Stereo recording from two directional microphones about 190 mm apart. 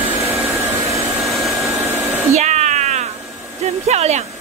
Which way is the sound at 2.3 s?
35° right (ahead or behind).